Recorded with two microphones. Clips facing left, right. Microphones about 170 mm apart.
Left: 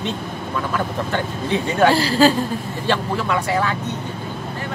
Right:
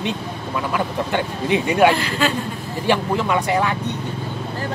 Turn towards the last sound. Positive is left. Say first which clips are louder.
# right 1 dB
turn(degrees=-15)  # may be behind; listen again after turning